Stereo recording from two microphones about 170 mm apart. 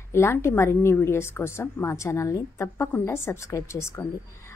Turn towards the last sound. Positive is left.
turn(degrees=15)  # may be behind; listen again after turning